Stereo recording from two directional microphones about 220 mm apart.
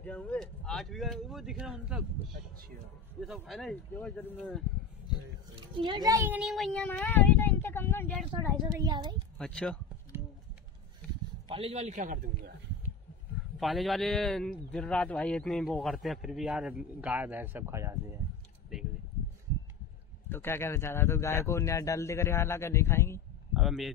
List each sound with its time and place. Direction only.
0.0 s a man's voice: 5° left (ahead or behind)
3.4 s a man's voice: centre (ahead or behind)
5.6 s a man's voice: 20° right (ahead or behind); by 8.3 s 5° left (ahead or behind)
8.7 s a child's voice: 15° right (ahead or behind)
9.4 s a man's voice: 5° left (ahead or behind)
11.4 s a man's voice: 25° right (ahead or behind)
13.6 s a man's voice: centre (ahead or behind)
18.7 s a sound: centre (ahead or behind)
20.2 s a man's voice: 10° left (ahead or behind)
23.5 s speech: centre (ahead or behind)